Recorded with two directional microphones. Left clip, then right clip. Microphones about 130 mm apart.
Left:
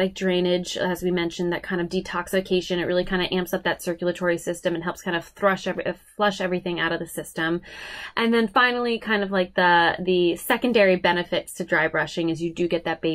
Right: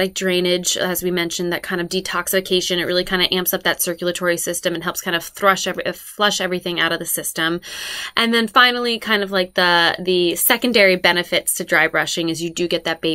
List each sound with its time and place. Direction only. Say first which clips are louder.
0.0 s speech: right 4 dB; 20° right (ahead or behind)